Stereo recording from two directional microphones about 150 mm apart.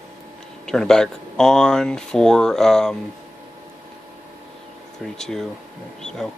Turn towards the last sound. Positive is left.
turn(degrees=5)  # may be behind; listen again after turning